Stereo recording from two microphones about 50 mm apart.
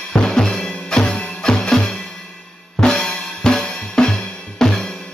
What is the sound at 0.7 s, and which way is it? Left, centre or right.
Music, centre.